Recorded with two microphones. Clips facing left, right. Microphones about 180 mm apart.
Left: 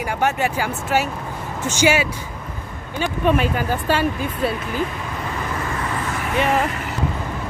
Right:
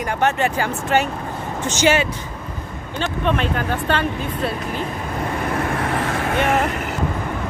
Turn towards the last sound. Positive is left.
turn(degrees=0)  # may be behind; listen again after turning